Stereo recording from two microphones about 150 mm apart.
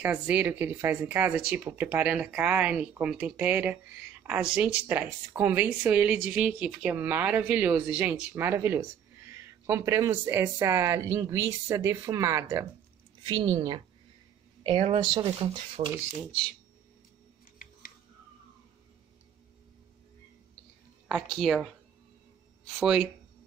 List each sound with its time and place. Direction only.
0.0 s speech: 10° right (ahead or behind); by 15.9 s 35° right (ahead or behind)
21.1 s speech: centre (ahead or behind)
22.8 s speech: 5° right (ahead or behind)